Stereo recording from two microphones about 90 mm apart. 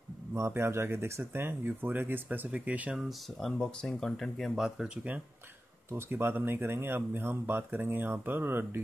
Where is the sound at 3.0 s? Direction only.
Centre (ahead or behind).